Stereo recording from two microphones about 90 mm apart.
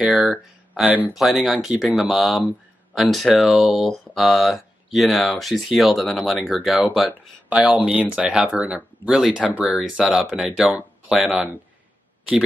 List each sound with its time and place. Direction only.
0.0 s speech: 5° right (ahead or behind)
0.8 s speech: 20° right (ahead or behind)
1.1 s speech: centre (ahead or behind)
7.1 s speech: 15° right (ahead or behind)